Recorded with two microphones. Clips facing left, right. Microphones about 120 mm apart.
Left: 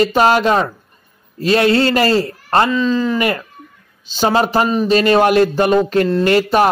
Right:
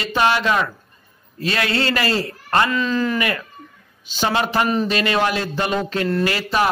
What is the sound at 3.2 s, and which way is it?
A man's voice, 35° left (ahead or behind).